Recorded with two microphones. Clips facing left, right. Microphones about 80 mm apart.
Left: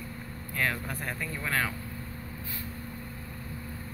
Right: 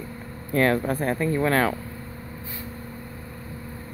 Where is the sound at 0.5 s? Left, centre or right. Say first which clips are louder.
Right 11 dB; right.